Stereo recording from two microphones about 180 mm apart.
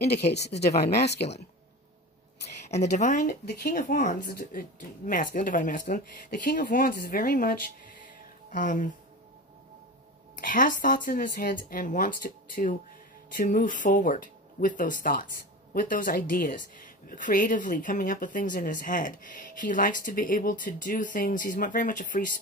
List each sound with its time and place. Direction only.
0.1 s speech: 65° left (ahead or behind)
0.6 s speech: 40° left (ahead or behind)
2.7 s a woman's voice: 40° left (ahead or behind)
3.4 s a woman's voice: 55° left (ahead or behind)
10.3 s a woman's voice: 50° left (ahead or behind)